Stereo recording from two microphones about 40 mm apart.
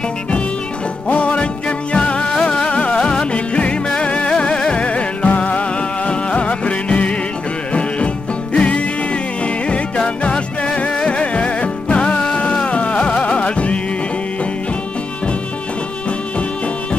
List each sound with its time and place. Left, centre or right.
1.0 s music: left
8.5 s music: left